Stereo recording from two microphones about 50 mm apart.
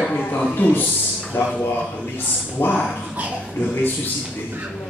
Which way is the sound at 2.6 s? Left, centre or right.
Left.